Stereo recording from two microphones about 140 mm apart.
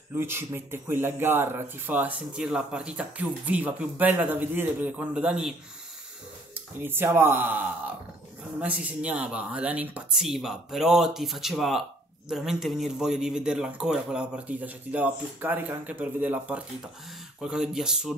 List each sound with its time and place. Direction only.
0.1 s speech: 15° right (ahead or behind)
6.5 s speech: 15° right (ahead or behind)